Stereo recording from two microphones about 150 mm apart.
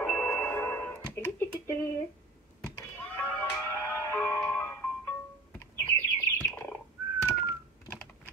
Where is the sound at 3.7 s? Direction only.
15° left (ahead or behind).